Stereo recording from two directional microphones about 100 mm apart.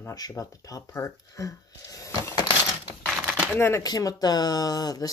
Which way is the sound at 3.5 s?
25° left (ahead or behind).